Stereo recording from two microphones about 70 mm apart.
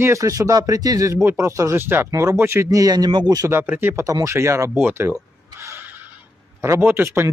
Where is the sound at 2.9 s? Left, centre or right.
Right.